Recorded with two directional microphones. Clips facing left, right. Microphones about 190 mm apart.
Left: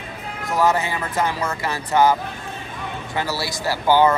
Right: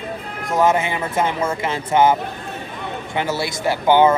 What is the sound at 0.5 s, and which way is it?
Speech, 20° right (ahead or behind).